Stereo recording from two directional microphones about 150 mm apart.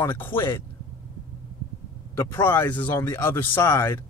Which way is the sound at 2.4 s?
10° left (ahead or behind).